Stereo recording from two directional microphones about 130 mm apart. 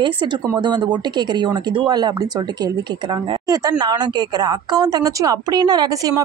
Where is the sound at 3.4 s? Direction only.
30° right (ahead or behind).